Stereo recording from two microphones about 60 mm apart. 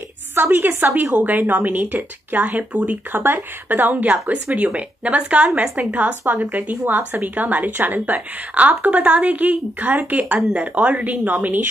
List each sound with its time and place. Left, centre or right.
0.3 s a woman's voice: right